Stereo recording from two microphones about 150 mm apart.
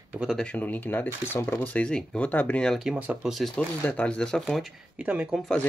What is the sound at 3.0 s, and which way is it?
Speech, 5° right (ahead or behind).